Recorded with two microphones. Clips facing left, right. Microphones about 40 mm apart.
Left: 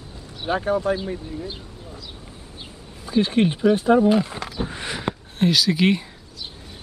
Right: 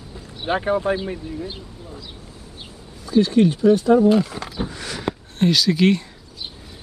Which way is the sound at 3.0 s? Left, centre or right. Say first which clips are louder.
Right 3 dB; left.